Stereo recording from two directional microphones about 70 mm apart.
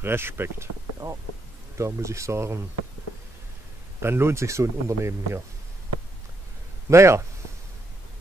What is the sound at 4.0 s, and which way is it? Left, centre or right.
Speech, right.